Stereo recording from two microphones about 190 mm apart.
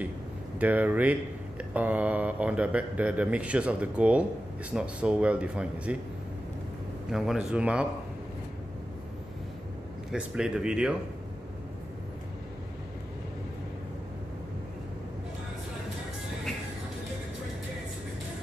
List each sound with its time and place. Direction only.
0.6 s speech: 10° right (ahead or behind)
7.1 s speech: centre (ahead or behind)
10.1 s speech: 5° right (ahead or behind)